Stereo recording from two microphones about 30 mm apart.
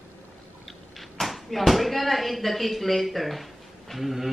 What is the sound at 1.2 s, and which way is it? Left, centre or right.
Basketball bounce, centre.